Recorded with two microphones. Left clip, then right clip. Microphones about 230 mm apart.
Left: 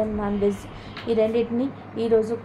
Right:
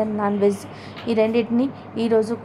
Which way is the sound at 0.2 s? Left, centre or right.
Right.